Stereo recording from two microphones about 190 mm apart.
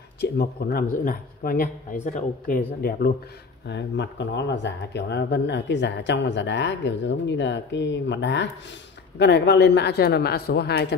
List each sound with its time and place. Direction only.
0.2 s speech: 55° left (ahead or behind)
3.6 s speech: 70° left (ahead or behind)